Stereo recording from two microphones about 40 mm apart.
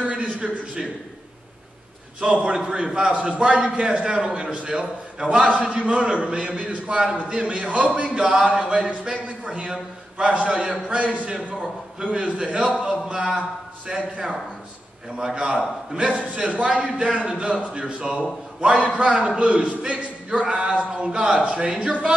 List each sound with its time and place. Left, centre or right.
0.0 s a sound: right
2.1 s a man's voice: right
13.1 s speech: centre
13.8 s a man's voice: right
16.3 s a man's voice: right